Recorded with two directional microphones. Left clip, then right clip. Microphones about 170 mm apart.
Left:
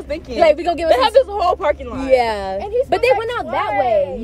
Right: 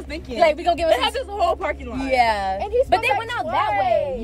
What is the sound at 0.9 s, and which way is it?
Speech, 45° left (ahead or behind).